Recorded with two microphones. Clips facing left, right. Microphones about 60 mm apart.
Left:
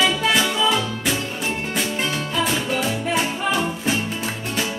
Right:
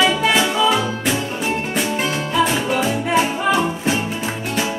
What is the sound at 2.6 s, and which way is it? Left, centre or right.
Music, centre.